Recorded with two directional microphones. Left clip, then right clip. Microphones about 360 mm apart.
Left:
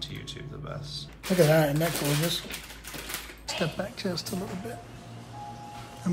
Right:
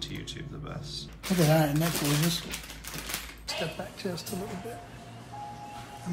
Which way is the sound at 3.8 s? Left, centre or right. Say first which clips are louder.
Left 4 dB; left.